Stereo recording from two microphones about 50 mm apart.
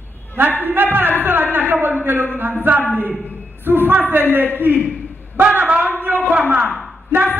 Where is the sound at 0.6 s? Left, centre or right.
Right.